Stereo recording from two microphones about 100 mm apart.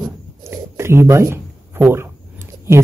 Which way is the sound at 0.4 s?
25° right (ahead or behind).